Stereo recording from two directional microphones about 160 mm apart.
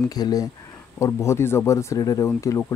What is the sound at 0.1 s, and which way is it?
Speech, 25° left (ahead or behind).